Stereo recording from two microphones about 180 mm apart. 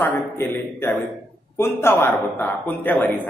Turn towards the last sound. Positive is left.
turn(degrees=10)  # may be behind; listen again after turning